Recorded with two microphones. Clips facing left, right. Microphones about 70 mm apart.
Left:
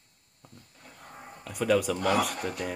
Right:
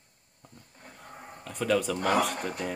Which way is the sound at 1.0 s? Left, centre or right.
Centre.